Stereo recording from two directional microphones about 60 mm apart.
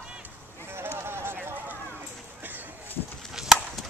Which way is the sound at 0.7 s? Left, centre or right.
Right.